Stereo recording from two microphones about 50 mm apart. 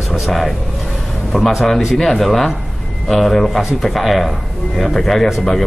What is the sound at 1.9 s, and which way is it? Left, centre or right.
Speech, centre.